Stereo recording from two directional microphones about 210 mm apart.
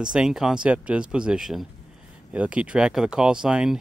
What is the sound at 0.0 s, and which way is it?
Speech, 5° right (ahead or behind).